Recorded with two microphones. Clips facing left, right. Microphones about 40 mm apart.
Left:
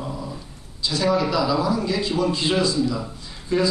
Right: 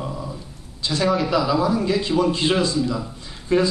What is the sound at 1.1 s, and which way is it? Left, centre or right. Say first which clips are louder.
A man's voice: even; right.